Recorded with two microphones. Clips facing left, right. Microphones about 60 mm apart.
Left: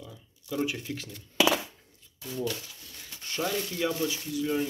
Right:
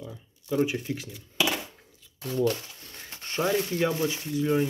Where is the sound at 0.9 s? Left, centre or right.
Centre.